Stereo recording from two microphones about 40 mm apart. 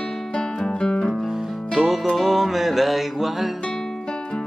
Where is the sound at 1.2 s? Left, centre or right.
Centre.